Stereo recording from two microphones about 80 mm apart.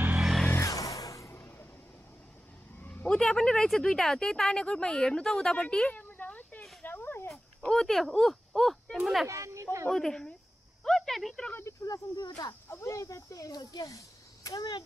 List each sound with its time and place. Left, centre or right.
0.1 s music: centre
0.7 s music: left
2.8 s a sound: centre
3.1 s speech: centre
5.9 s a sound: left
7.2 s speech: centre
9.3 s speech: right
9.8 s speech: centre
10.8 s a sound: centre
11.8 s speech: left
12.6 s speech: left